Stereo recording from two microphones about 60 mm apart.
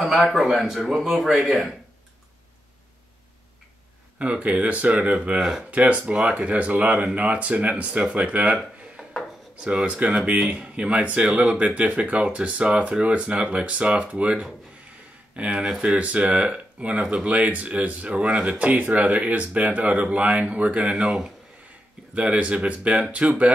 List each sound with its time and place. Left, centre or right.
0.0 s speech: centre
4.2 s speech: right
9.6 s speech: centre
20.9 s speech: centre
22.1 s speech: right